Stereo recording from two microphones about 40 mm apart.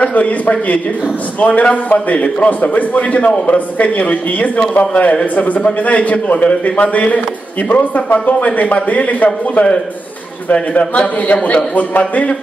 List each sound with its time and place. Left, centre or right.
0.0 s a man's voice: left